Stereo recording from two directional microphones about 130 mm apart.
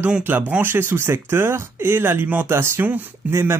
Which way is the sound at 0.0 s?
15° right (ahead or behind).